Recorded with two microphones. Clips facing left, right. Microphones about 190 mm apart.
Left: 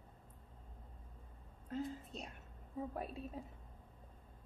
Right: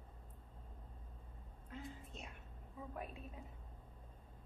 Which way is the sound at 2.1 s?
35° left (ahead or behind).